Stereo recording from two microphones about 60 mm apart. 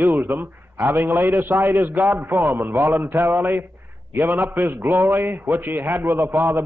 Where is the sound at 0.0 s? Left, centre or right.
Right.